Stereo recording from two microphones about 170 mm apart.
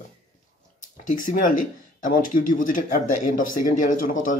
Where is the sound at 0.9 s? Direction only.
50° left (ahead or behind).